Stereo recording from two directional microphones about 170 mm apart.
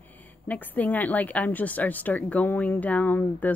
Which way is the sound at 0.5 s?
10° left (ahead or behind).